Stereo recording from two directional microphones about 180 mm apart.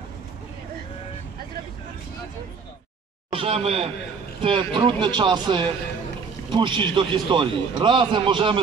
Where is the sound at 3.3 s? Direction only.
30° right (ahead or behind).